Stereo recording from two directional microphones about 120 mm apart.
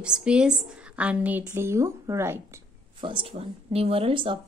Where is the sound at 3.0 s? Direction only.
50° right (ahead or behind).